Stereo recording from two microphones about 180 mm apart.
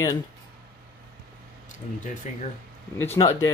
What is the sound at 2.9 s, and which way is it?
Speech, 15° left (ahead or behind).